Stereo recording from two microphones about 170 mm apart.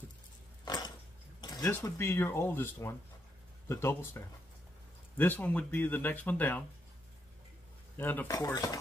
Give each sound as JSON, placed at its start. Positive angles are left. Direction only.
{"t": 0.7, "sound": "dog", "side_deg": 25}
{"t": 1.4, "sound": "a sound", "side_deg": 25}
{"t": 1.8, "sound": "speech", "side_deg": 15}
{"t": 8.0, "sound": "speech", "side_deg": 10}